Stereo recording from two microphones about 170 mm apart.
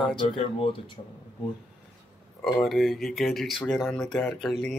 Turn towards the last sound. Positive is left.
turn(degrees=0)  # may be behind; listen again after turning